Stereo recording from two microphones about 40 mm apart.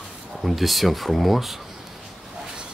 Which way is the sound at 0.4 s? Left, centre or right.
Centre.